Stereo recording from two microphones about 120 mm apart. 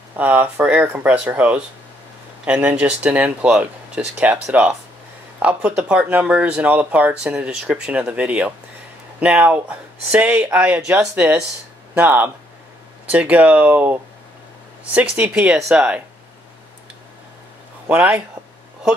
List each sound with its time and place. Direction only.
0.2 s speech: 15° right (ahead or behind)
15.0 s speech: 10° right (ahead or behind)
17.8 s speech: 15° right (ahead or behind)